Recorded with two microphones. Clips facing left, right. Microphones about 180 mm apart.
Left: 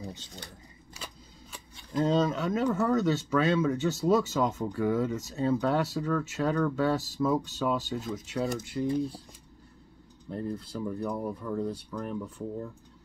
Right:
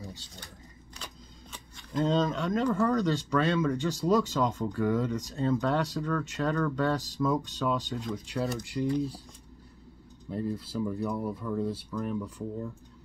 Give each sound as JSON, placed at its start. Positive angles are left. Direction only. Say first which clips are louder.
{"t": 1.5, "sound": "speech", "louder": "left 1 dB", "side_deg": 5}
{"t": 10.3, "sound": "speech", "louder": "right 2 dB", "side_deg": -5}